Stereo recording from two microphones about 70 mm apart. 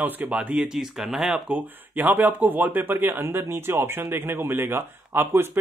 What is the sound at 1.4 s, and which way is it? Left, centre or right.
Speech, right.